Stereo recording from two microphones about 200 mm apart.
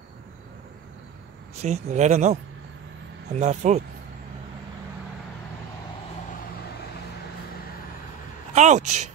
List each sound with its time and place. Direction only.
1.6 s speech: 35° right (ahead or behind)
3.3 s speech: 35° right (ahead or behind)
8.5 s speech: 35° right (ahead or behind)